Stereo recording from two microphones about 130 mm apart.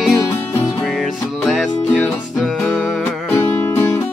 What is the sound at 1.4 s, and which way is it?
Music, centre (ahead or behind).